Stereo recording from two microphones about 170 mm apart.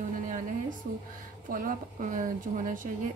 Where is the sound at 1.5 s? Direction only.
55° right (ahead or behind).